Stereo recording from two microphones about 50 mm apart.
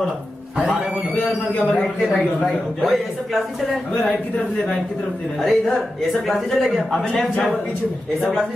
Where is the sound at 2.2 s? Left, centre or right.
Centre.